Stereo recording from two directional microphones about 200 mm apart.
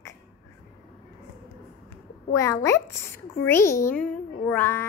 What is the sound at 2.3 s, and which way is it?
A child's voice, 15° left (ahead or behind).